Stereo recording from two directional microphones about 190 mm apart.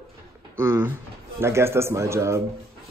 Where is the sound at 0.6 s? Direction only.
15° right (ahead or behind).